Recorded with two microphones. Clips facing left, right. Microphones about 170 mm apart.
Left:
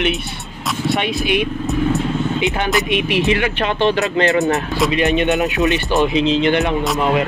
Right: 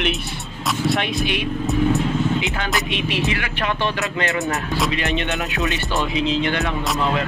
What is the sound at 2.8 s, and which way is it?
Speech, 15° left (ahead or behind).